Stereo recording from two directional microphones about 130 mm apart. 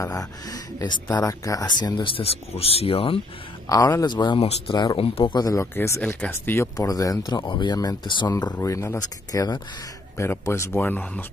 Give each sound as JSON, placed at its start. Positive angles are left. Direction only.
{"t": 0.0, "sound": "speech", "side_deg": 25}
{"t": 2.2, "sound": "speech", "side_deg": 50}
{"t": 3.6, "sound": "speech", "side_deg": 25}
{"t": 4.4, "sound": "speech", "side_deg": 55}
{"t": 5.9, "sound": "speech", "side_deg": 5}
{"t": 6.3, "sound": "speech", "side_deg": 20}